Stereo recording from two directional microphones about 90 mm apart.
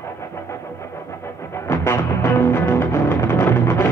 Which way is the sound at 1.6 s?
30° left (ahead or behind).